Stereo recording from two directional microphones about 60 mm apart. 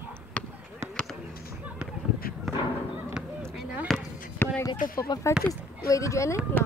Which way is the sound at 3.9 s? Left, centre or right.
Centre.